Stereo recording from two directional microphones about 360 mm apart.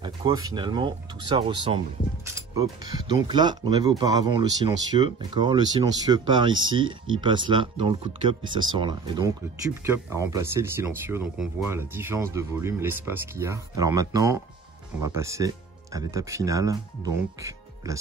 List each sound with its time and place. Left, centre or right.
0.0 s speech: centre